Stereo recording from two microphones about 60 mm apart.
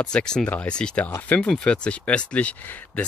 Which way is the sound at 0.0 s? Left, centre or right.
Centre.